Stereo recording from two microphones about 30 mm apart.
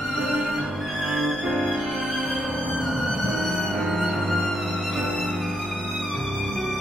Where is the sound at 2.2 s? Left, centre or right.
Right.